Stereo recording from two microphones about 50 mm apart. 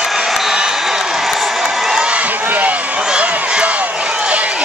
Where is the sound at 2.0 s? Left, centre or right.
Right.